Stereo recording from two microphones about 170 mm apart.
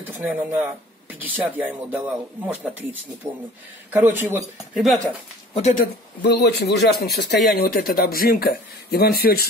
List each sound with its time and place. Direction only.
0.1 s speech: 10° right (ahead or behind)
4.8 s speech: 5° left (ahead or behind)
5.5 s speech: 45° left (ahead or behind)
6.2 s speech: 75° left (ahead or behind)